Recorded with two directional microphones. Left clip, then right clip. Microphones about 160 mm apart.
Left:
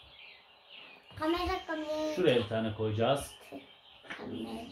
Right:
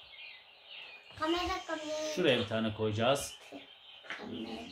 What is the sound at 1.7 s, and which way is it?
Speech, 25° left (ahead or behind).